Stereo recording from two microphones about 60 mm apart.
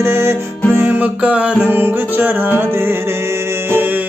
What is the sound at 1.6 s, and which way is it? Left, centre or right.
Music, right.